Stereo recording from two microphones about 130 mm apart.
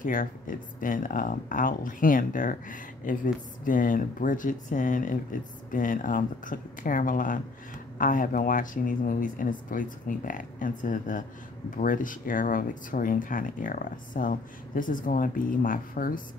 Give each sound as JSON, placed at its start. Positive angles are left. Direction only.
{"t": 0.0, "sound": "speech", "side_deg": 90}